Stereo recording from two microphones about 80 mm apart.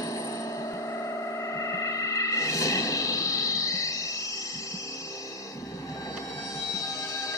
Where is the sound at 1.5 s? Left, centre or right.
Left.